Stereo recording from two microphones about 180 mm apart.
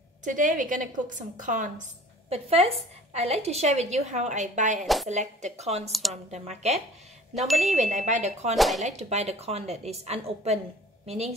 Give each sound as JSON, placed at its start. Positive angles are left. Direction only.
{"t": 0.2, "sound": "a woman's voice", "side_deg": -45}
{"t": 4.8, "sound": "speech", "side_deg": 0}
{"t": 5.1, "sound": "a woman's voice", "side_deg": -40}
{"t": 5.9, "sound": "speech", "side_deg": 0}
{"t": 6.3, "sound": "a woman's voice", "side_deg": -40}
{"t": 8.5, "sound": "speech", "side_deg": 0}
{"t": 8.8, "sound": "a woman's voice", "side_deg": -40}